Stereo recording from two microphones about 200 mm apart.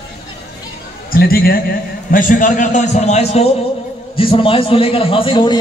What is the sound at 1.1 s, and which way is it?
A man's voice, 50° left (ahead or behind).